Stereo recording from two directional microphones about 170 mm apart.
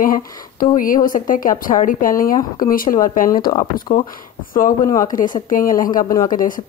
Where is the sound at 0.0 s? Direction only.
55° left (ahead or behind).